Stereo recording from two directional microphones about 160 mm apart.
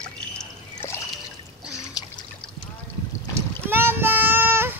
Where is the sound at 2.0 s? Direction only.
25° left (ahead or behind).